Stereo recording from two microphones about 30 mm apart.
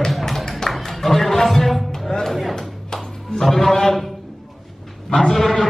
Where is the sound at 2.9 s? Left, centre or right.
Centre.